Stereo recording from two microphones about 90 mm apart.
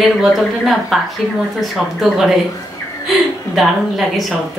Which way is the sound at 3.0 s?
Centre (ahead or behind).